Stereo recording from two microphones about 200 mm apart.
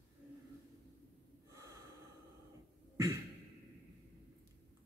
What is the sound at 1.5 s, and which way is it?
Snort, 15° right (ahead or behind).